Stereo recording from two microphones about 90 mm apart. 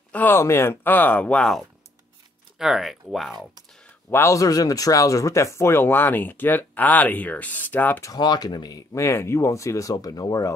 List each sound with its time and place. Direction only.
0.1 s speech: 20° left (ahead or behind); by 3.4 s centre (ahead or behind)
4.1 s speech: 30° left (ahead or behind)
8.0 s speech: 50° left (ahead or behind)
9.9 s speech: 50° left (ahead or behind)